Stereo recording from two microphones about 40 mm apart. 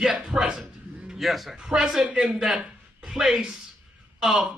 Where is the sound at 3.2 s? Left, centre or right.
Right.